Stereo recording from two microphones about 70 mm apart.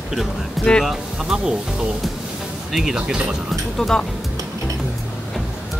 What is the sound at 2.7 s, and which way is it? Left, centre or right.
Speech, centre.